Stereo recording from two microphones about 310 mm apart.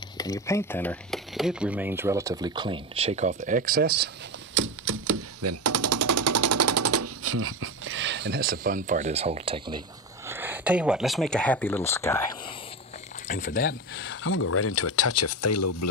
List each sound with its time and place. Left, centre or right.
0.2 s speech: centre; by 4.1 s right
4.6 s typewriter: right; by 12.5 s centre
13.3 s speech: left
13.7 s speech: left